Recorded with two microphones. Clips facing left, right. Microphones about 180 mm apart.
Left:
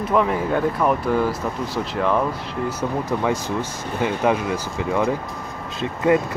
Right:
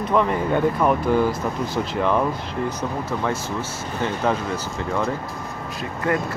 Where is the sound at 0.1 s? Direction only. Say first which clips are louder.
Even; 5° left (ahead or behind).